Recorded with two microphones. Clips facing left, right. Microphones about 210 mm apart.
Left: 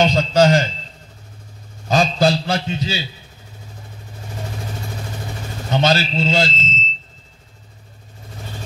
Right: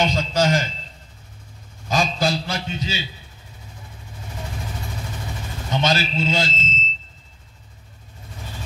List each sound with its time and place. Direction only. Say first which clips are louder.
0.0 s a man's voice: left 6 dB; 30° left (ahead or behind)
1.9 s a sound: left 5 dB; 30° left (ahead or behind)
5.7 s a man's voice: left 4 dB; 30° left (ahead or behind)